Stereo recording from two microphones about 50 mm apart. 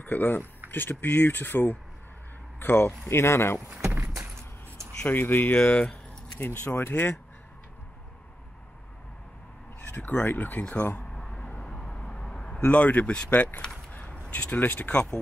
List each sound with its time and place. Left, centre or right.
0.0 s speech: left
3.1 s speech: left
3.7 s a sound: centre
4.2 s a sound: right
5.0 s speech: left
5.6 s speech: left
9.8 s speech: left
11.1 s a sound: centre
12.6 s speech: left
14.9 s speech: left